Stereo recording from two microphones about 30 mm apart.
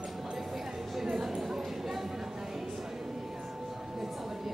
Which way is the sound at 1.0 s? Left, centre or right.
Centre.